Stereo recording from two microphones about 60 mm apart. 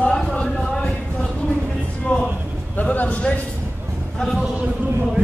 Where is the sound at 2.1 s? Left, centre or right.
Left.